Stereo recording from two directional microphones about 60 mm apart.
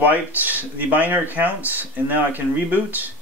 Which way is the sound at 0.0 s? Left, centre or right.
Right.